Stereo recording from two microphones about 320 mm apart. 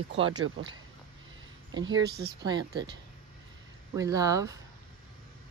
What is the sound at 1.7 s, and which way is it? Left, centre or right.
Speech, right.